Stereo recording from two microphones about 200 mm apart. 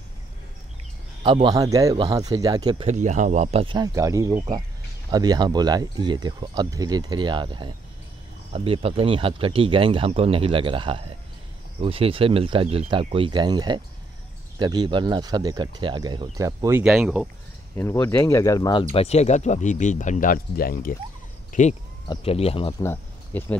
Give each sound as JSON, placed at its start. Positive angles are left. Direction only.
{"t": 1.2, "sound": "speech", "side_deg": -25}
{"t": 2.9, "sound": "speech", "side_deg": -40}
{"t": 16.8, "sound": "speech", "side_deg": -5}
{"t": 17.7, "sound": "speech", "side_deg": 10}
{"t": 18.9, "sound": "speech", "side_deg": 30}
{"t": 22.0, "sound": "speech", "side_deg": 25}
{"t": 22.8, "sound": "speech", "side_deg": 10}